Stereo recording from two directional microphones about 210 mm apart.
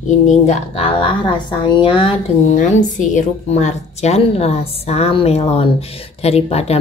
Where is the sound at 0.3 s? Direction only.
30° left (ahead or behind).